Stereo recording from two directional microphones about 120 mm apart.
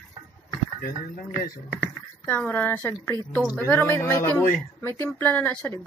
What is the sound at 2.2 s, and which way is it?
Speech, 15° left (ahead or behind).